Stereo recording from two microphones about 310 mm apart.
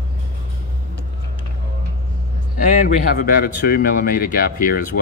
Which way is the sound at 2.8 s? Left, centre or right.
Left.